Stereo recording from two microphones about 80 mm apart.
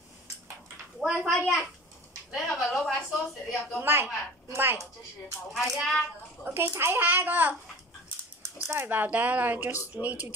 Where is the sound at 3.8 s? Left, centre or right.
Right.